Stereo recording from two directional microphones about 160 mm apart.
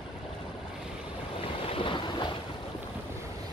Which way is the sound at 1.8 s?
30° left (ahead or behind).